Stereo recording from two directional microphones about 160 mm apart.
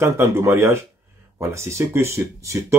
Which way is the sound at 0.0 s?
15° right (ahead or behind).